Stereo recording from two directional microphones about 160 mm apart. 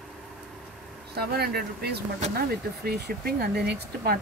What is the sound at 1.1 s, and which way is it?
Speech, 85° right.